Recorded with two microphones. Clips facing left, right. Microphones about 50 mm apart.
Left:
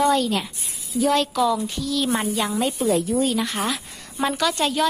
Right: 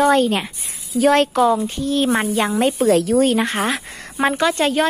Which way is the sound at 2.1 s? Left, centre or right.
Right.